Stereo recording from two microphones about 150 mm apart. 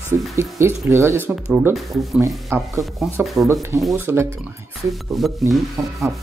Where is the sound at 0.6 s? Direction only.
20° right (ahead or behind).